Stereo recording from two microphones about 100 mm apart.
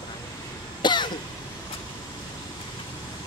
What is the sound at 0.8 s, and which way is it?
Cough, 50° left (ahead or behind).